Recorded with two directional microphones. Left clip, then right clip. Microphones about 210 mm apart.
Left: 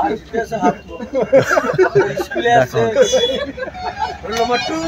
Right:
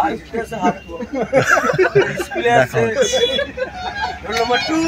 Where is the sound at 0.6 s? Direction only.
55° left (ahead or behind).